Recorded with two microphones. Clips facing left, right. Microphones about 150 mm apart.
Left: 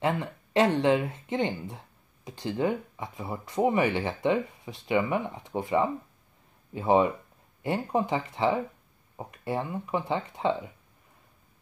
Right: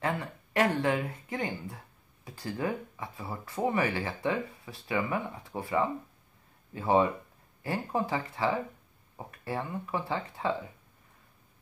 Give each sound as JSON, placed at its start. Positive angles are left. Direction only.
{"t": 0.0, "sound": "speech", "side_deg": 20}